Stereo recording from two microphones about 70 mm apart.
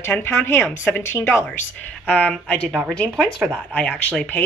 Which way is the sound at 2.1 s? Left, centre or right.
Left.